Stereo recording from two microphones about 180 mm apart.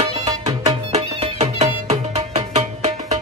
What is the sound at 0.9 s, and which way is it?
Music, 40° right (ahead or behind).